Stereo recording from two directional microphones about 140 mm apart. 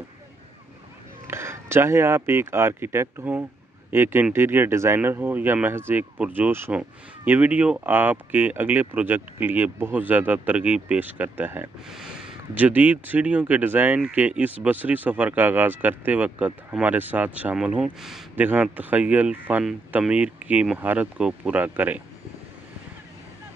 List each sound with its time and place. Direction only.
1.2 s speech: 20° right (ahead or behind)